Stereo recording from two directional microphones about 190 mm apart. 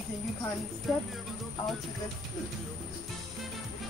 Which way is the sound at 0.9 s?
Centre (ahead or behind).